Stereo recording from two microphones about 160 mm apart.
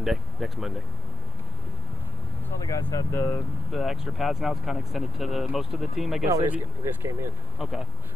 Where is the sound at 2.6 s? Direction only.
20° left (ahead or behind).